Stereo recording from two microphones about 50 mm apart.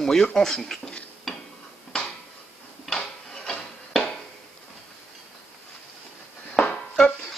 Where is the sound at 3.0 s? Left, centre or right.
Centre.